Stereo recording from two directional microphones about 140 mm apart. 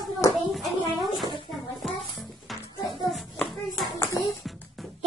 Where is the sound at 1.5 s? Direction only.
Centre (ahead or behind).